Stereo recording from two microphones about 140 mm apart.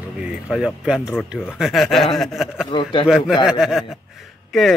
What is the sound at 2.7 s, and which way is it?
Speech, 35° left (ahead or behind).